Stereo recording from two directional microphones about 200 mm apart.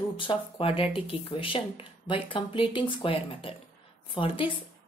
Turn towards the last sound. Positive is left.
turn(degrees=25)  # may be behind; listen again after turning